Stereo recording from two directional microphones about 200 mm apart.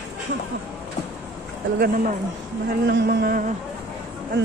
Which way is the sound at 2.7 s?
55° right (ahead or behind).